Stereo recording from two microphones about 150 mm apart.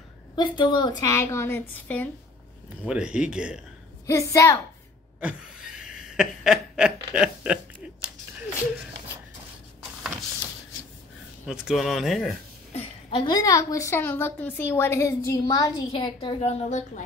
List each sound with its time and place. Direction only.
0.4 s a woman's voice: 30° left (ahead or behind); by 2.0 s 15° left (ahead or behind)
2.9 s speech: 5° right (ahead or behind)
4.1 s a woman's voice: 20° left (ahead or behind)
5.2 s snicker: 5° right (ahead or behind)
11.4 s speech: 5° right (ahead or behind)
12.7 s a sound: 35° left (ahead or behind)
13.4 s a woman's voice: 20° left (ahead or behind); by 17.0 s 50° left (ahead or behind)